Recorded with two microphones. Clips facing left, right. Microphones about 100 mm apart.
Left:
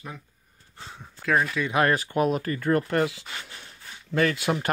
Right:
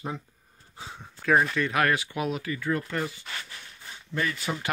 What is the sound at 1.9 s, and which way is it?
Speech, 40° left (ahead or behind).